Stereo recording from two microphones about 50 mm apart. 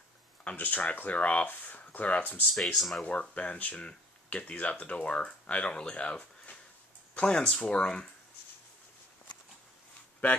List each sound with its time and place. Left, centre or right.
0.6 s speech: left
2.5 s speech: centre
3.0 s speech: left